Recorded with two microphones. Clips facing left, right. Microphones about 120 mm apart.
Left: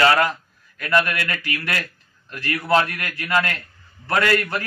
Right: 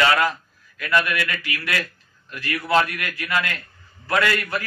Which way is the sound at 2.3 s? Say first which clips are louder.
Left 2 dB; 40° left (ahead or behind).